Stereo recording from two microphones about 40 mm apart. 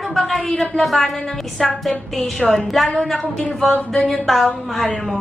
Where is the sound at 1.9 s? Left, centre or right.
Centre.